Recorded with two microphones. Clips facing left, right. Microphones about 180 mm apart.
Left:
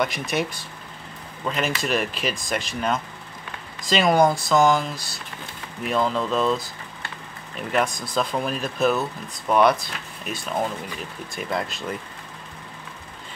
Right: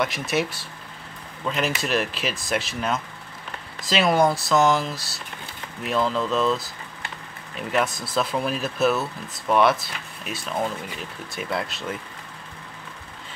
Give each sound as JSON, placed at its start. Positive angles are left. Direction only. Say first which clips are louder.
{"t": 0.0, "sound": "speech", "louder": "even", "side_deg": 0}